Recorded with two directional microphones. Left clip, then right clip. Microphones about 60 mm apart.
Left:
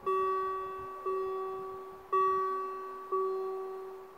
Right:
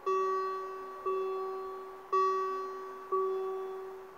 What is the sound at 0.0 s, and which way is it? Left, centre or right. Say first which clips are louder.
Music: even; centre.